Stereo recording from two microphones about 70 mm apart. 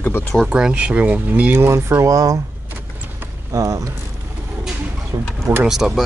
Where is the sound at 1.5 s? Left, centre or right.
Right.